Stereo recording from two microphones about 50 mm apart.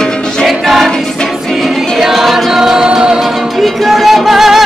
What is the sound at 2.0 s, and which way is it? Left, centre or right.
Music, centre.